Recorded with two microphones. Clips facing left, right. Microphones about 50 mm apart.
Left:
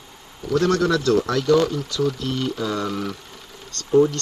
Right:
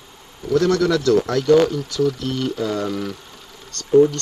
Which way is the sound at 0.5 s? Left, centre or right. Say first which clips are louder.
Right 2 dB; left.